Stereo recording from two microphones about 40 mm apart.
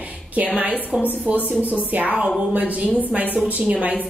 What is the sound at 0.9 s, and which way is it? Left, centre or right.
A woman's voice, right.